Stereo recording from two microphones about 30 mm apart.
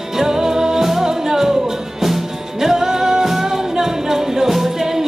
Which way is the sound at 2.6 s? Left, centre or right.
Centre.